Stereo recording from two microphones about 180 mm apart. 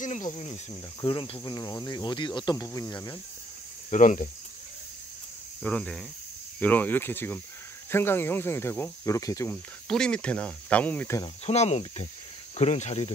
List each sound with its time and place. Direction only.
0.0 s speech: 45° left (ahead or behind)
1.0 s cricket: 30° left (ahead or behind)
3.9 s speech: 45° left (ahead or behind)
5.6 s speech: 5° left (ahead or behind)
9.8 s speech: 5° left (ahead or behind)
11.4 s cricket: 35° left (ahead or behind)